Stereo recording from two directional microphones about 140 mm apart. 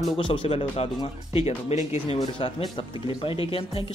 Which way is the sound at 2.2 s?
40° left (ahead or behind).